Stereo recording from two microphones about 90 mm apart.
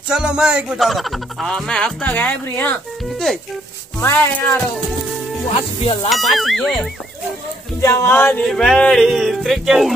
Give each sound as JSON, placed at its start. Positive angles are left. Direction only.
{"t": 0.1, "sound": "speech", "side_deg": -10}
{"t": 3.1, "sound": "speech", "side_deg": 5}
{"t": 4.0, "sound": "speech", "side_deg": 30}
{"t": 6.0, "sound": "speech", "side_deg": 0}
{"t": 7.8, "sound": "speech", "side_deg": 30}
{"t": 8.4, "sound": "speech", "side_deg": 5}